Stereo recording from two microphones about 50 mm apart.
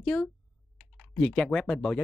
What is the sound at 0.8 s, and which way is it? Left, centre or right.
Typing, centre.